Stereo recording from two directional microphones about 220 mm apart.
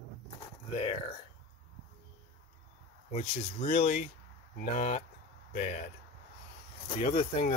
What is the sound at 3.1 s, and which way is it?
Speech, 35° left (ahead or behind).